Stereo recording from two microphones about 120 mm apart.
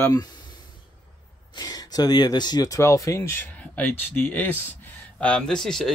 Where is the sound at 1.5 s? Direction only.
35° left (ahead or behind).